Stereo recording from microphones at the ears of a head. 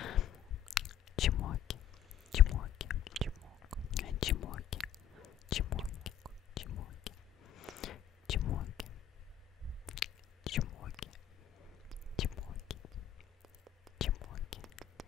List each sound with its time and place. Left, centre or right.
0.0 s whispering: left
3.1 s whispering: right
3.8 s whispering: left
9.9 s whispering: left
12.2 s whispering: left